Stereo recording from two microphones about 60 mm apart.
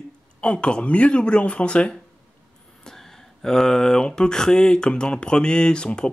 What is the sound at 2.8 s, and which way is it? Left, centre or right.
Speech, centre.